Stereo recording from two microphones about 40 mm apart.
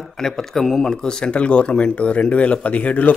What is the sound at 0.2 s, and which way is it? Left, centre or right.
Speech, centre.